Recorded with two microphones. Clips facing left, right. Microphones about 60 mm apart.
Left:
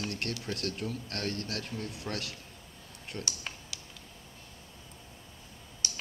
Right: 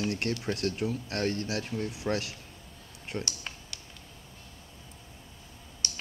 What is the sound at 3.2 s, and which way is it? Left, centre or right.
Computer keyboard, centre.